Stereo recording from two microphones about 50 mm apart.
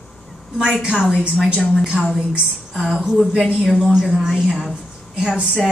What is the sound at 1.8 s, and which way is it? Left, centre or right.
Speech, centre.